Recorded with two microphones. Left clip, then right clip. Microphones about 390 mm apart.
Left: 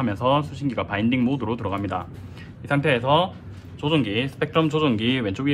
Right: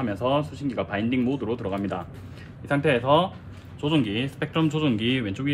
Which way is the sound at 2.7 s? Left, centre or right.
Centre.